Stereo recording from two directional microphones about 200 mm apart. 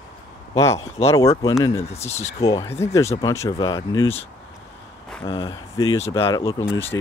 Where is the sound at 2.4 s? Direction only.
15° left (ahead or behind).